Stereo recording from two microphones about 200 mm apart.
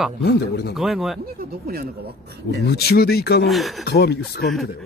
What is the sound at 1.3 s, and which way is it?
Speech, 50° right (ahead or behind).